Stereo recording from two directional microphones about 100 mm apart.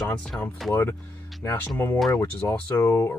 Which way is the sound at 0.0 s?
5° left (ahead or behind).